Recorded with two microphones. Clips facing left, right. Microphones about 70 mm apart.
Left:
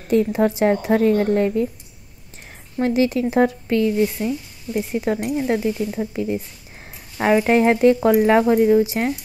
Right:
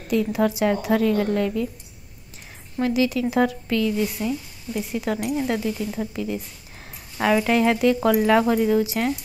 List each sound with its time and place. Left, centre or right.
0.1 s speech: left
2.8 s speech: left